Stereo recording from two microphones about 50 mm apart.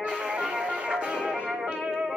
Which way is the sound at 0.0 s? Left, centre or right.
Centre.